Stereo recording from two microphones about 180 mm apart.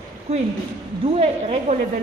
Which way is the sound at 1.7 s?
35° right (ahead or behind).